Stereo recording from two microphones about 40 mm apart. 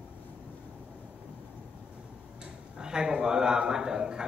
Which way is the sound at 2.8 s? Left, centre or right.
Centre.